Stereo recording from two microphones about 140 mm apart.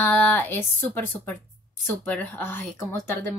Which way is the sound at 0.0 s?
15° left (ahead or behind).